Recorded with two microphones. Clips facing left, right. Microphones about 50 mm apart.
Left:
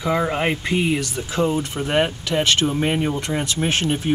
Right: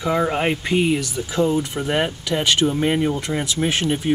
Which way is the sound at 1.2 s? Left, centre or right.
Left.